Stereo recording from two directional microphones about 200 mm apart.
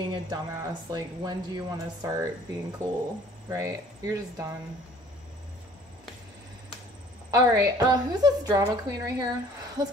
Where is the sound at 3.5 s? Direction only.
15° right (ahead or behind).